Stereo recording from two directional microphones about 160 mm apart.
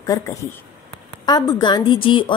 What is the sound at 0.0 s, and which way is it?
A woman's voice, 20° left (ahead or behind).